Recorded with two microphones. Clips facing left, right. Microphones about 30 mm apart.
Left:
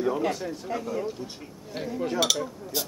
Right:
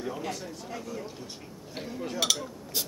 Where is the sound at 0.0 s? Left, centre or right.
Left.